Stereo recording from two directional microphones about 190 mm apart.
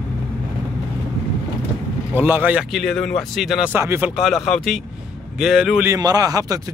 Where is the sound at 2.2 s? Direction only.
10° right (ahead or behind).